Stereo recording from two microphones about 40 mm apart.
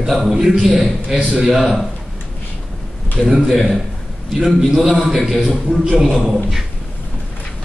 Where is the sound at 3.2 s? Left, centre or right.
Centre.